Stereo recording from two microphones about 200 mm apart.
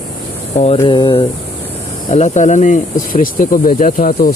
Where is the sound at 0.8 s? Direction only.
25° left (ahead or behind); by 4.3 s 45° left (ahead or behind).